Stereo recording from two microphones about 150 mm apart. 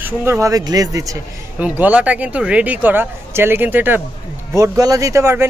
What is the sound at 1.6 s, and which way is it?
A man's voice, 10° right (ahead or behind).